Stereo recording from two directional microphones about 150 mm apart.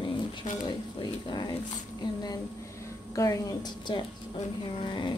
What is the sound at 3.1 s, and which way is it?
Speech, 25° left (ahead or behind).